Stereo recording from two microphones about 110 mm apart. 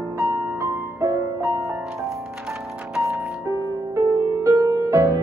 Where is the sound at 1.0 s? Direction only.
30° right (ahead or behind).